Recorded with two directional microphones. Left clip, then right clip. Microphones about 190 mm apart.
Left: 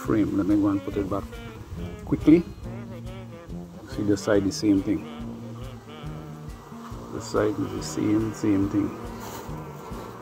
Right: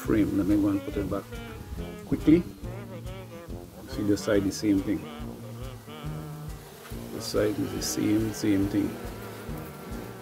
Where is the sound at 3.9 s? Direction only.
5° right (ahead or behind).